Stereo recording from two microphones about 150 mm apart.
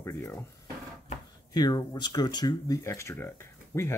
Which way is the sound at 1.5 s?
25° left (ahead or behind).